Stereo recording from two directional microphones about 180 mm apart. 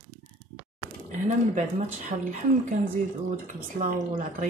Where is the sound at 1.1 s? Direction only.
40° right (ahead or behind).